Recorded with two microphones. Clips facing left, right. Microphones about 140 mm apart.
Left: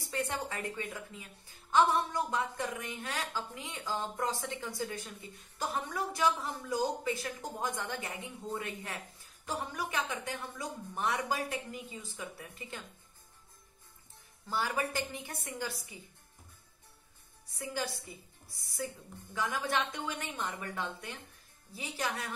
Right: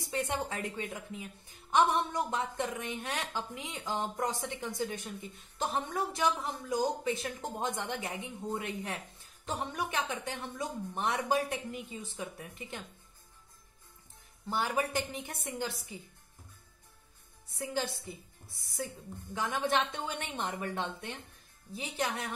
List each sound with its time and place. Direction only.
0.1 s speech: 20° right (ahead or behind)
14.5 s speech: 20° right (ahead or behind)
17.6 s speech: 25° right (ahead or behind)
19.3 s speech: 20° right (ahead or behind)